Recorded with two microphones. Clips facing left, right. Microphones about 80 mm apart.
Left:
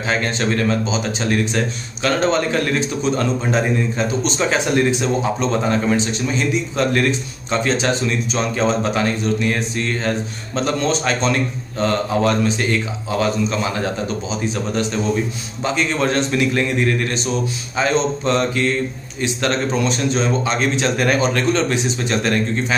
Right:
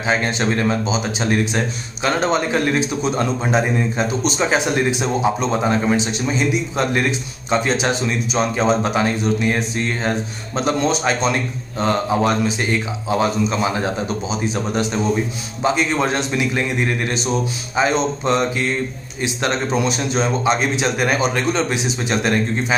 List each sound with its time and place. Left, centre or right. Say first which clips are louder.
0.1 s a man's voice: right 1 dB; centre